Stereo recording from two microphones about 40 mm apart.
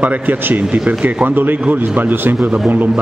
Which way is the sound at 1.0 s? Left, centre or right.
Right.